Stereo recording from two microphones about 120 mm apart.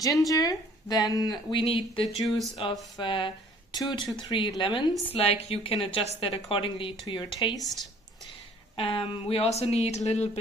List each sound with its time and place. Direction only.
0.3 s speech: 30° left (ahead or behind)
2.2 s speech: centre (ahead or behind)
2.7 s speech: 35° left (ahead or behind)
5.1 s speech: 60° left (ahead or behind); by 7.5 s 40° left (ahead or behind)
7.6 s speech: centre (ahead or behind)
8.7 s speech: 50° left (ahead or behind); by 10.4 s 65° left (ahead or behind)